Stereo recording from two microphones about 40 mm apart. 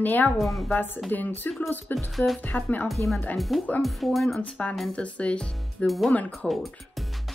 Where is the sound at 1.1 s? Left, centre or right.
Left.